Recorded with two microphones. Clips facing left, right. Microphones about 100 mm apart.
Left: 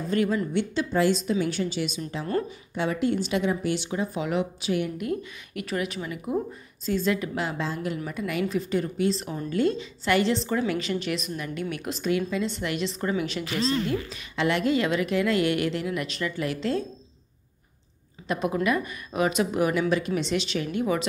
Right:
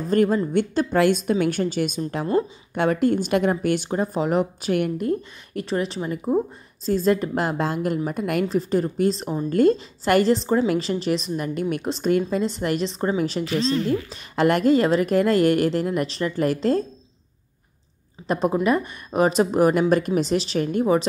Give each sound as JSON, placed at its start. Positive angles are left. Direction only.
{"t": 0.1, "sound": "speech", "side_deg": -45}
{"t": 4.9, "sound": "a woman's voice", "side_deg": -35}
{"t": 8.5, "sound": "a woman's voice", "side_deg": -35}
{"t": 13.8, "sound": "a woman's voice", "side_deg": -45}
{"t": 18.2, "sound": "a woman's voice", "side_deg": -35}